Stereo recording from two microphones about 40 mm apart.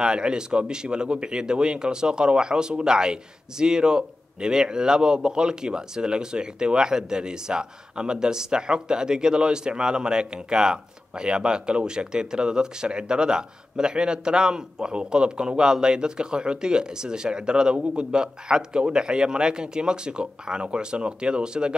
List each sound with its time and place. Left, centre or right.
0.0 s a man's voice: right